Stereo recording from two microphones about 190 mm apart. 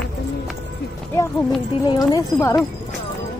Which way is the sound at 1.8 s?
20° left (ahead or behind).